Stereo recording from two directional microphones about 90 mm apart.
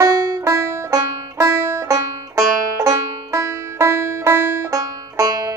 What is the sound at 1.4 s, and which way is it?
Music, 25° right (ahead or behind).